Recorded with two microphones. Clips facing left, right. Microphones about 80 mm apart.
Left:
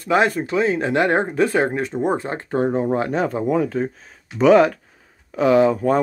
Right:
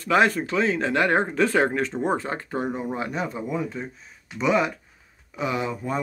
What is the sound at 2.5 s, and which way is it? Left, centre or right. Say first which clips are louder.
Speech: left 10 dB; left.